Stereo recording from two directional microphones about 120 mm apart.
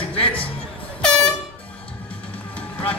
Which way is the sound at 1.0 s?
5° left (ahead or behind).